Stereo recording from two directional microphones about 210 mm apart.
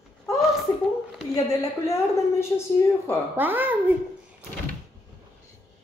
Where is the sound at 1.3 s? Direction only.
15° left (ahead or behind).